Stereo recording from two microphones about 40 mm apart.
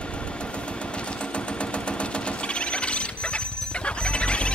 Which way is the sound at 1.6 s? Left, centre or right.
Left.